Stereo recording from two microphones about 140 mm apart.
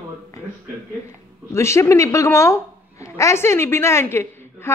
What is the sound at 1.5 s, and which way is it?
A woman's voice, 20° left (ahead or behind).